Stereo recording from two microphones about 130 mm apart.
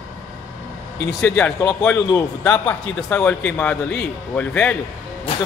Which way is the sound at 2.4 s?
15° left (ahead or behind).